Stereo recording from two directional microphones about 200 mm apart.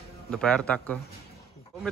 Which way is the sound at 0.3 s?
5° left (ahead or behind).